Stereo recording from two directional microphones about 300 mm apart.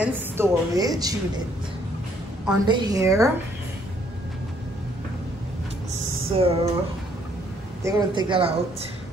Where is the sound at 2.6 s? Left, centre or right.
Centre.